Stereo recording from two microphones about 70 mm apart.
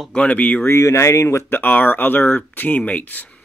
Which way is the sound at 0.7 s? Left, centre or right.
Left.